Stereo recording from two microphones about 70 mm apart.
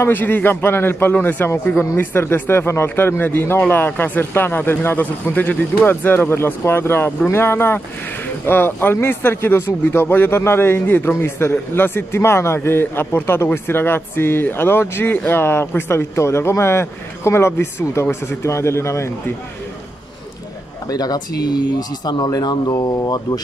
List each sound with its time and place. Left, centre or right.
0.0 s speech: left
20.9 s speech: left